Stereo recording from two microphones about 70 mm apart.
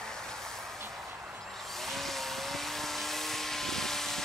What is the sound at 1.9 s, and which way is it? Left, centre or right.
Vehicle, centre.